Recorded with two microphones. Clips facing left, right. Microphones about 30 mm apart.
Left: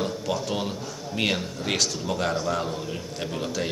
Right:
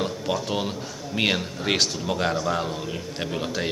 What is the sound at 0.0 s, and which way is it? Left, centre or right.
A man's voice, centre.